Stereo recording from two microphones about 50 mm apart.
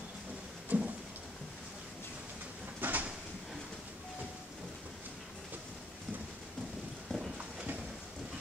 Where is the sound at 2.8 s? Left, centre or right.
Right.